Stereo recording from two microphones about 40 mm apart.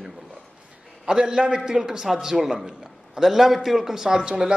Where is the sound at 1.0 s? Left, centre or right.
Centre.